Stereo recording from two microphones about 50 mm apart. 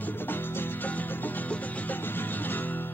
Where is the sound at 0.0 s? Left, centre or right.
Left.